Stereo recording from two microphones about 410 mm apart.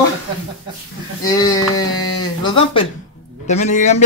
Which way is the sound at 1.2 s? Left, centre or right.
Centre.